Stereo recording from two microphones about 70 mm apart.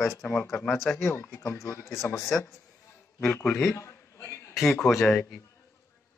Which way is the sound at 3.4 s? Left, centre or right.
Centre.